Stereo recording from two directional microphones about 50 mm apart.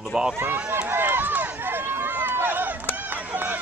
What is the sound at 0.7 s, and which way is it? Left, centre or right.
Run, right.